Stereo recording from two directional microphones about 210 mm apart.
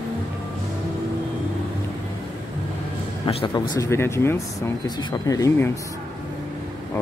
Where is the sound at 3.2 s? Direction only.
25° left (ahead or behind).